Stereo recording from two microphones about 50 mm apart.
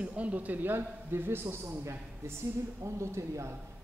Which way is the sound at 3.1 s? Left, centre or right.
Right.